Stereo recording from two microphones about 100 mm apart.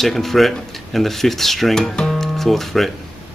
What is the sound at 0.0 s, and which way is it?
Speech, centre (ahead or behind).